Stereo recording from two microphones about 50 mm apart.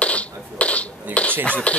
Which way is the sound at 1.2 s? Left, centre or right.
Left.